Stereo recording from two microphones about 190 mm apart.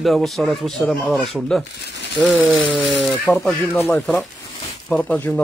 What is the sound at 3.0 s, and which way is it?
Speech, 5° left (ahead or behind).